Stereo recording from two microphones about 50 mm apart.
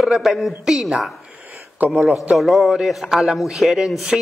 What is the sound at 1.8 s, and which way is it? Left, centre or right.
Speech, right.